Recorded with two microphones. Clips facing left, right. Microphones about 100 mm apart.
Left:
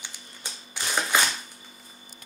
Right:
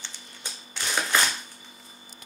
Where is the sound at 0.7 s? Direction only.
15° left (ahead or behind).